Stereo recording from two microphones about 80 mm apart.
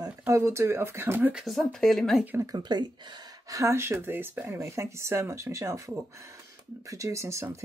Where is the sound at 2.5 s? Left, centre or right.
Right.